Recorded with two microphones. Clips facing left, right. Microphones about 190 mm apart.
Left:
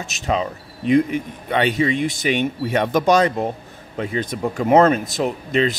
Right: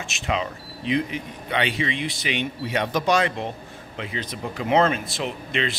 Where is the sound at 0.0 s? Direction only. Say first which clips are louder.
Left 4 dB; 40° left (ahead or behind).